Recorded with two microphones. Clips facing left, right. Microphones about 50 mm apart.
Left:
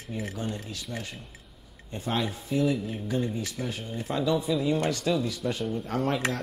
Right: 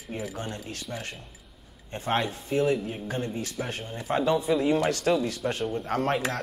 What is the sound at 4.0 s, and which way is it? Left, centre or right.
Speech, right.